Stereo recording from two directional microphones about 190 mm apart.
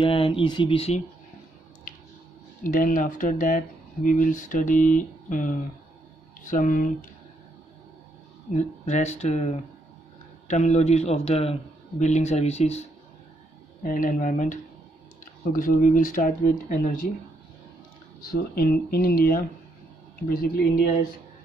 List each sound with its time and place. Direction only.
0.0 s speech: 30° left (ahead or behind)
2.6 s speech: 45° left (ahead or behind)
8.5 s speech: 35° left (ahead or behind)
13.8 s speech: 45° left (ahead or behind)
18.2 s speech: 50° left (ahead or behind)